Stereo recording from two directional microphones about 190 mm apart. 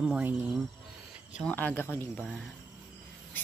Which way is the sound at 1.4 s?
10° left (ahead or behind).